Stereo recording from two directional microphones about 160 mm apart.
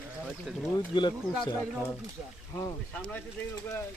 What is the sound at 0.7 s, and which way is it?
Speech, 30° left (ahead or behind).